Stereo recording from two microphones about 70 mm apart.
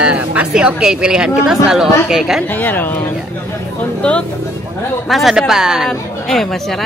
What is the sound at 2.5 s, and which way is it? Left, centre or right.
Speech, left.